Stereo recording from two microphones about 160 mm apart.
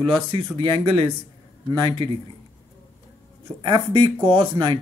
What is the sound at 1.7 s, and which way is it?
Speech, 30° right (ahead or behind).